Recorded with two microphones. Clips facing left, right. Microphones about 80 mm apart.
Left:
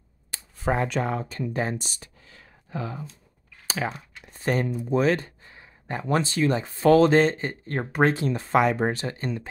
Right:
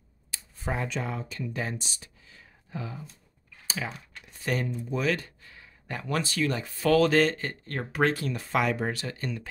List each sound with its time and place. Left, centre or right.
0.3 s speech: left
4.3 s a sound: left
4.6 s speech: left
4.9 s speech: left